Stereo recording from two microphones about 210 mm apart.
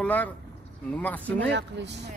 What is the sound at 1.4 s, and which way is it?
Speech, 55° right (ahead or behind).